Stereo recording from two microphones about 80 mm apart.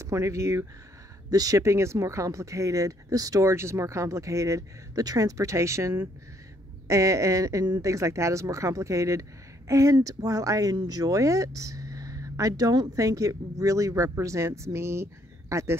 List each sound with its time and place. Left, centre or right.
0.0 s speech: right
1.3 s speech: right
1.6 s speech: right